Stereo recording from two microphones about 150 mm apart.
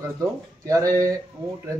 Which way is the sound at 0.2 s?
20° right (ahead or behind).